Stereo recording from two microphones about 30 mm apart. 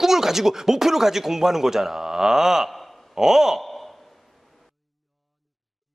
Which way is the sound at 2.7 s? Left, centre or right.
Centre.